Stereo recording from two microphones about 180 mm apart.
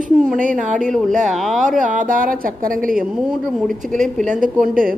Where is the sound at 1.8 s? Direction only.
45° right (ahead or behind).